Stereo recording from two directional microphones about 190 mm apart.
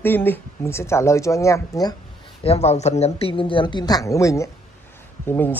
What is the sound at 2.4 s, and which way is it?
Speech, 35° left (ahead or behind).